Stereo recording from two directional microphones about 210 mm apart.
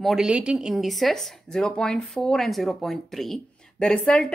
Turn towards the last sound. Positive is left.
turn(degrees=5)  # may be behind; listen again after turning